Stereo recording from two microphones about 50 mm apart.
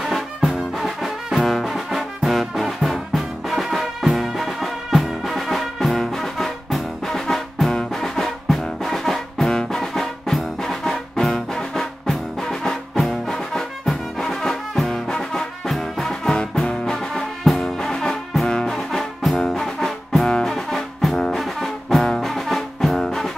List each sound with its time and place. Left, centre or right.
0.1 s music: centre
18.5 s brass instrument: centre
18.9 s music: centre